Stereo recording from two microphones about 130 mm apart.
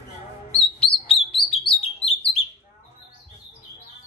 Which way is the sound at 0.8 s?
45° left (ahead or behind).